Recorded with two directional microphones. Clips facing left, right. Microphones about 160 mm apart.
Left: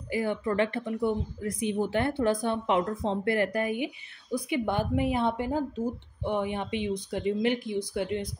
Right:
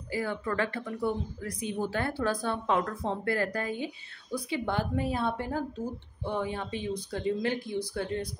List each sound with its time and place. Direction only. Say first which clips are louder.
0.1 s a woman's voice: left 3 dB; 20° left (ahead or behind)